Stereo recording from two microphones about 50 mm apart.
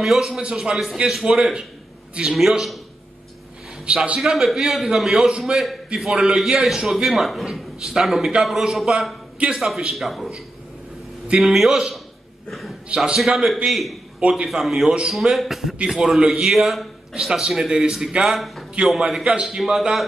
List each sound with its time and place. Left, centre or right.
0.0 s a man's voice: centre
3.9 s a man's voice: right
4.2 s a man's voice: centre
11.4 s a man's voice: centre
12.4 s a sound: centre
12.8 s a man's voice: centre
14.3 s a man's voice: centre
14.9 s a man's voice: centre
15.1 s a man's voice: centre